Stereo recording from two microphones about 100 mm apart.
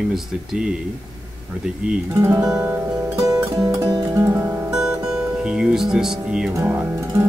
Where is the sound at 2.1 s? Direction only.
30° right (ahead or behind).